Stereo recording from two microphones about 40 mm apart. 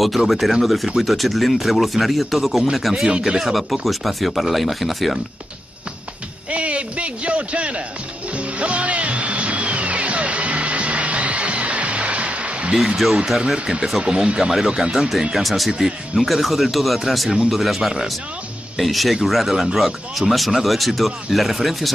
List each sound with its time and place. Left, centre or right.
0.3 s speech: centre
3.1 s speech: right
3.3 s speech: centre
6.5 s a man's voice: right
8.4 s music: right
12.7 s speech: centre; by 14.5 s right
14.5 s speech: centre